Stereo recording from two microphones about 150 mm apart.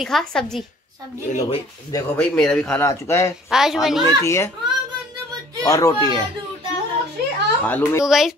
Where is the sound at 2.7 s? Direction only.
20° left (ahead or behind).